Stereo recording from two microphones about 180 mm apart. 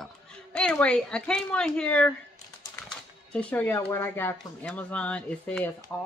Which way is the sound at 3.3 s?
5° left (ahead or behind).